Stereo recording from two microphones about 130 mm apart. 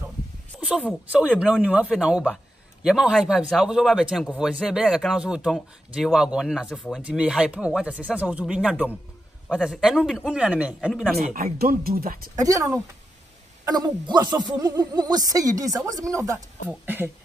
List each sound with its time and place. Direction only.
0.5 s a sound: 5° right (ahead or behind)
1.1 s a man's voice: 10° right (ahead or behind)
10.9 s a man's voice: 5° left (ahead or behind)
11.3 s speech: 90° right
12.4 s speech: 25° right (ahead or behind)
16.6 s speech: 15° right (ahead or behind)